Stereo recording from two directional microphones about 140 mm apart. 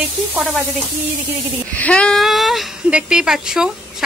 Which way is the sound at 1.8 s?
10° left (ahead or behind).